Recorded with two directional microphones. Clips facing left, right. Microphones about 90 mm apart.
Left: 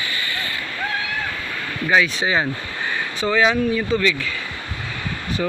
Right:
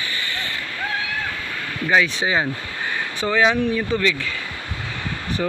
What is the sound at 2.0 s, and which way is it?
Speech, 25° right (ahead or behind).